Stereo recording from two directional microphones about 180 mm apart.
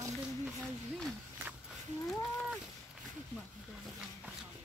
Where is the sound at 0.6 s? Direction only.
5° left (ahead or behind).